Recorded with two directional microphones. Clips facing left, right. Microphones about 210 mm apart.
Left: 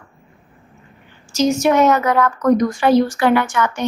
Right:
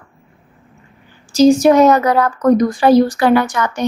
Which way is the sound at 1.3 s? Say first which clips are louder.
Right 6 dB; 35° right (ahead or behind).